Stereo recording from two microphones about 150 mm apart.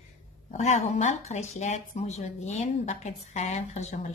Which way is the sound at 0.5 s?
50° left (ahead or behind).